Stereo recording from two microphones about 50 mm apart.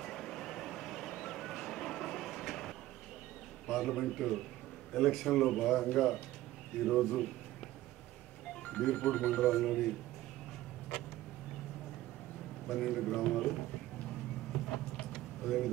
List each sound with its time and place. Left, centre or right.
0.0 s vehicle: centre
3.6 s a man's voice: centre
8.6 s a man's voice: centre
12.6 s a man's voice: centre
15.4 s speech: centre